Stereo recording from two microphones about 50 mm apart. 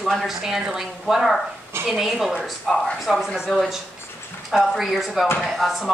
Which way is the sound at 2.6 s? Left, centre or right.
Centre.